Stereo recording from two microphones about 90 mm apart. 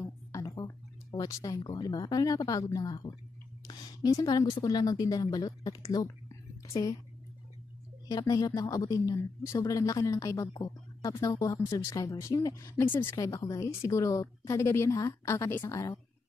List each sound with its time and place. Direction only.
0.0 s music: 35° left (ahead or behind)
0.7 s a sound: 40° left (ahead or behind)
1.7 s speech: 45° left (ahead or behind)
6.0 s whispering: 35° left (ahead or behind)
8.1 s speech: 45° left (ahead or behind)
12.8 s speech: 20° left (ahead or behind)
13.1 s speech: 35° left (ahead or behind)